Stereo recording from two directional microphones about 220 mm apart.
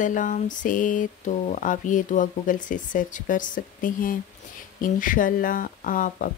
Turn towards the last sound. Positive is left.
turn(degrees=35)  # may be behind; listen again after turning